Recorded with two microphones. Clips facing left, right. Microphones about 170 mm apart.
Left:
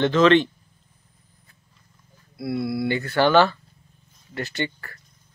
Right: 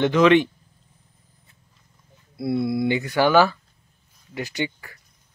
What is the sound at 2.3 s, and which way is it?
A man's voice, 25° right (ahead or behind).